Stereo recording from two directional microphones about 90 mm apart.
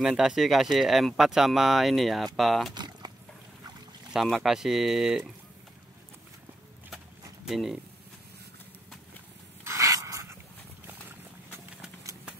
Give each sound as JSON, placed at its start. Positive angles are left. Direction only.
{"t": 0.0, "sound": "speech", "side_deg": -5}
{"t": 2.7, "sound": "a sound", "side_deg": -55}
{"t": 4.1, "sound": "speech", "side_deg": -5}
{"t": 7.4, "sound": "speech", "side_deg": -5}
{"t": 9.7, "sound": "dog", "side_deg": -35}
{"t": 11.1, "sound": "clip-clop", "side_deg": -20}